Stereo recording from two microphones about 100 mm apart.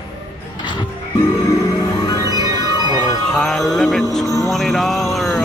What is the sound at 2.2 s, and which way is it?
Organ, 40° right (ahead or behind).